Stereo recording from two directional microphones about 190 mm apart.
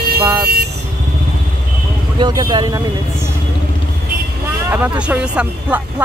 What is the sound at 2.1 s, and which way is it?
Speech, 20° right (ahead or behind).